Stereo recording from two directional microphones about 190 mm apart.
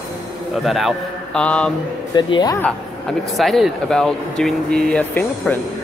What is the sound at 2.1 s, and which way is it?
Speech, 20° left (ahead or behind).